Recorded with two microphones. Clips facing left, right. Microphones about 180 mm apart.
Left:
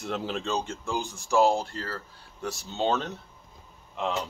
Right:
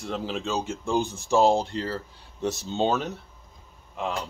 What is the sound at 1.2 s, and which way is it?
Speech, 20° right (ahead or behind).